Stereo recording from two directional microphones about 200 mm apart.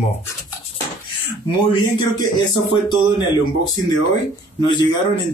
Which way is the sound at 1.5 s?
25° left (ahead or behind).